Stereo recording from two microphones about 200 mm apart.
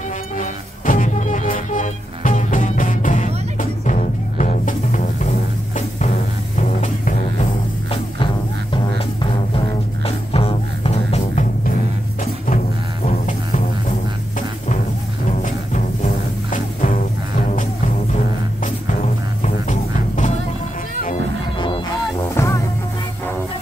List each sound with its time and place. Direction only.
0.4 s music: 40° left (ahead or behind)
6.5 s music: 35° left (ahead or behind)
8.7 s music: 25° left (ahead or behind)
15.4 s music: 40° left (ahead or behind)
19.4 s music: 35° left (ahead or behind)
21.5 s music: 25° left (ahead or behind)
22.3 s music: 15° left (ahead or behind)